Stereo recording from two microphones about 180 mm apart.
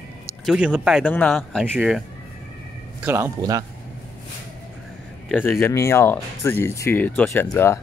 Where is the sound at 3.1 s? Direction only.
15° right (ahead or behind).